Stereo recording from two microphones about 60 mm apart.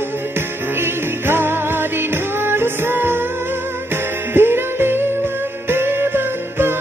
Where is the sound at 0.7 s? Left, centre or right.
Right.